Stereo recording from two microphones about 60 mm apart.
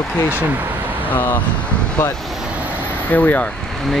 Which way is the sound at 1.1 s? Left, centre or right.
Left.